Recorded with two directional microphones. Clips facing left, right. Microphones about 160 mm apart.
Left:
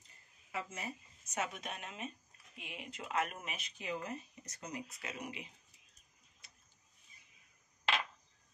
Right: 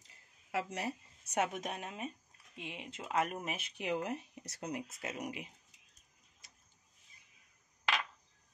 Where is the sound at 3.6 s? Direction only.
65° right (ahead or behind).